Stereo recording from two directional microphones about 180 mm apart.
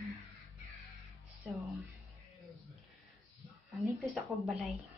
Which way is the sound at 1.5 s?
Centre (ahead or behind).